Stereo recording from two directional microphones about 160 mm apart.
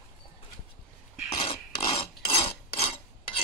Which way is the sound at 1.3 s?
35° left (ahead or behind).